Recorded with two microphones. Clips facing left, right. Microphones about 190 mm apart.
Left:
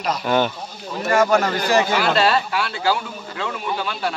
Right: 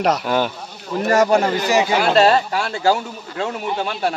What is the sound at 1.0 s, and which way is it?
Speech, 35° right (ahead or behind).